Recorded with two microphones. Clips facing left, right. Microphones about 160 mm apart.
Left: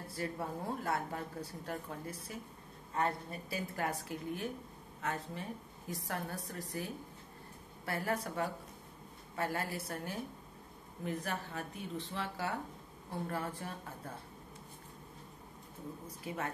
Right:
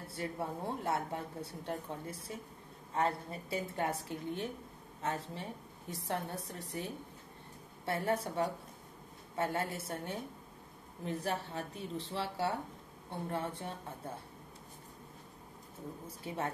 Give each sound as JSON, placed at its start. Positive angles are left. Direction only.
{"t": 0.1, "sound": "a woman's voice", "side_deg": -25}
{"t": 16.3, "sound": "speech", "side_deg": -30}